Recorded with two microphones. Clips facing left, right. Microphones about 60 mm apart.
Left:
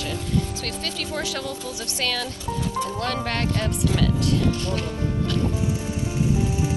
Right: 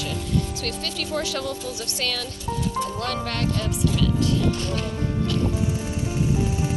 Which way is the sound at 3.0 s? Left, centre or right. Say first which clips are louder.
Left 1 dB; left.